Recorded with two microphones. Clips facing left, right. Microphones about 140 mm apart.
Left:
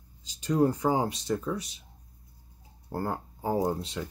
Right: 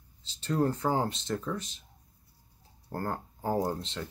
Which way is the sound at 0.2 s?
10° left (ahead or behind).